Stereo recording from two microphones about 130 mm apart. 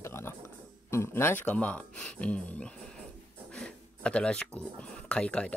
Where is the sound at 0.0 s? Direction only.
20° left (ahead or behind).